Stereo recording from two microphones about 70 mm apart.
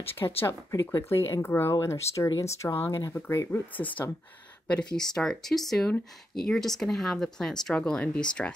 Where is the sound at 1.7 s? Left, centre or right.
Left.